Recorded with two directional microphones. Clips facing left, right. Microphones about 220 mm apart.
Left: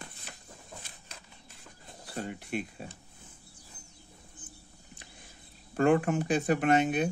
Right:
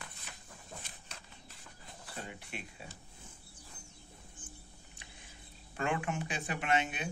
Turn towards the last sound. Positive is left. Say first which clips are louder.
# left 8 dB
turn(degrees=40)  # may be behind; listen again after turning